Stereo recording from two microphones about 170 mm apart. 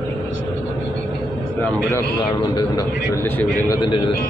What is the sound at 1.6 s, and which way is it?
Speech, 10° left (ahead or behind).